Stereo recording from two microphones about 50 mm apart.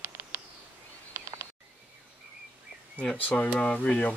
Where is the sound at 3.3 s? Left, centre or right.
Left.